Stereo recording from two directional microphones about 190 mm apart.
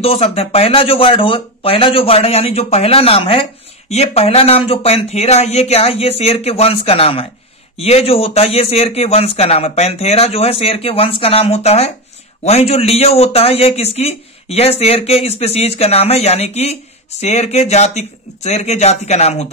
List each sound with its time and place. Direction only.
0.0 s a man's voice: 30° left (ahead or behind)